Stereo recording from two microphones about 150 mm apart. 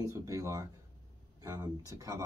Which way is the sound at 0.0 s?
20° right (ahead or behind).